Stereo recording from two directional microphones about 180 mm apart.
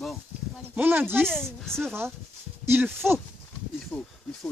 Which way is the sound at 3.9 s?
5° left (ahead or behind).